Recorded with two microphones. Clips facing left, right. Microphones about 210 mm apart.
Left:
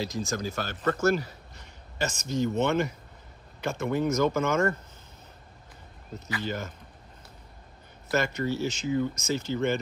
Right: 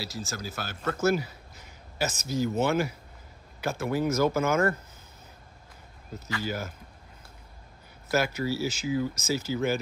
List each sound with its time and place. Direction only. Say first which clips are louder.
0.0 s speech: left 5 dB; 5° right (ahead or behind)
6.4 s speech: even; 5° right (ahead or behind)
8.1 s speech: even; 5° right (ahead or behind)